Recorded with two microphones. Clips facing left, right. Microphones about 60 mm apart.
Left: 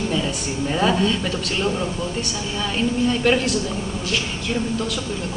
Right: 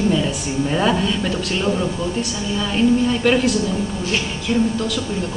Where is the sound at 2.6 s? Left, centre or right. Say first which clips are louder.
Right 5 dB; centre.